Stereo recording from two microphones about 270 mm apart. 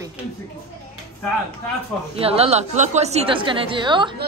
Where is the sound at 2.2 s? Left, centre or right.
Right.